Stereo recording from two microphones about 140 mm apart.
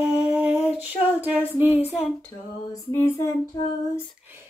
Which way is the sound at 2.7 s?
20° left (ahead or behind).